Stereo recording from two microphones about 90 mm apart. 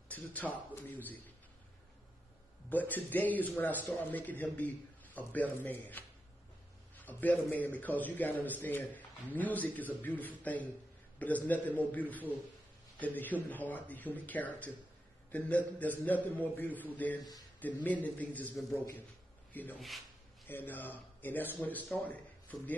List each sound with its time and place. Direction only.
0.1 s a man's voice: 20° left (ahead or behind)
2.7 s a man's voice: 20° left (ahead or behind)
17.2 s a man's voice: 45° left (ahead or behind)
17.8 s speech: 15° left (ahead or behind)
19.5 s speech: 20° left (ahead or behind)